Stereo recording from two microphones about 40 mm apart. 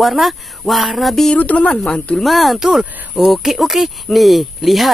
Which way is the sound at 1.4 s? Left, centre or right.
Left.